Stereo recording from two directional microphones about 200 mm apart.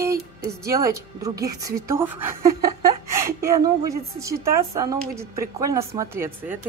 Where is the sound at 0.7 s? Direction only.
15° right (ahead or behind).